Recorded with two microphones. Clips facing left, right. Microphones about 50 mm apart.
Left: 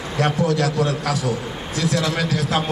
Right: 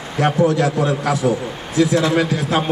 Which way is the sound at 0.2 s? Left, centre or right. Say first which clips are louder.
Right 4 dB; centre.